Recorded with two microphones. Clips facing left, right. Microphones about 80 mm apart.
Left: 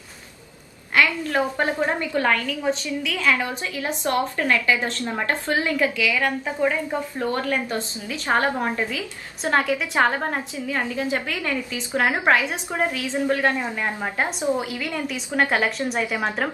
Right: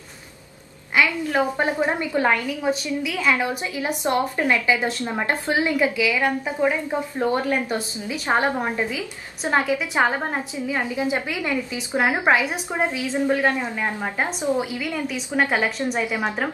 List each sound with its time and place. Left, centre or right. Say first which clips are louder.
0.9 s a woman's voice: even; centre
13.8 s a woman's voice: even; centre
14.6 s a woman's voice: right 1 dB; centre